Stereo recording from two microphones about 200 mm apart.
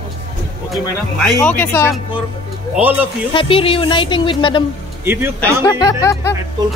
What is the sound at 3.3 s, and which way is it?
Speech, 25° left (ahead or behind).